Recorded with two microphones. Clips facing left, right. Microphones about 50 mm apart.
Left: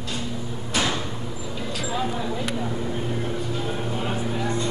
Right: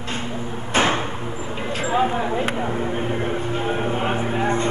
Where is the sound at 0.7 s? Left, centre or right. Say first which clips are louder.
Right 6 dB; right.